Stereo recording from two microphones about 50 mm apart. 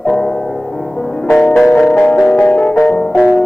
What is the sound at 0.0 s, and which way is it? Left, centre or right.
Music, centre.